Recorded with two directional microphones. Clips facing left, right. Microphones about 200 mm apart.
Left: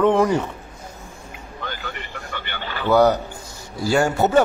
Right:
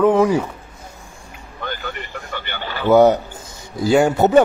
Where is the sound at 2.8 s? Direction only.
20° right (ahead or behind).